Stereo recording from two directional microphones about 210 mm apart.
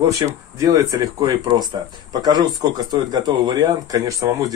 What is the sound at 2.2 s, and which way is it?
Speech, 20° right (ahead or behind).